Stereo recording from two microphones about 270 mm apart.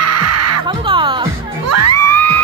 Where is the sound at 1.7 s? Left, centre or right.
Right.